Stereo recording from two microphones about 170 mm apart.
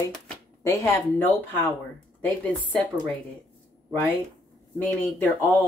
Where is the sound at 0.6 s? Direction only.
15° left (ahead or behind).